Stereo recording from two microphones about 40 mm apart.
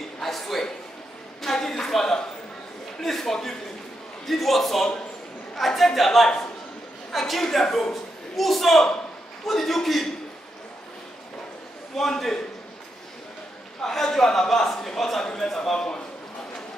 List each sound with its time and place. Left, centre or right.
0.2 s a sound: centre
3.0 s a man's voice: centre
11.9 s a man's voice: centre
13.7 s a man's voice: centre